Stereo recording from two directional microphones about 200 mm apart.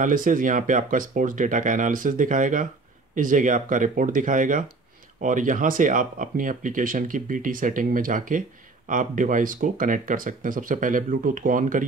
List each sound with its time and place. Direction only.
0.0 s speech: 40° right (ahead or behind)